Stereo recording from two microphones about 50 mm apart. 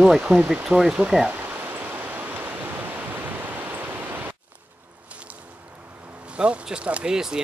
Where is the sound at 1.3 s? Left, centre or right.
Right.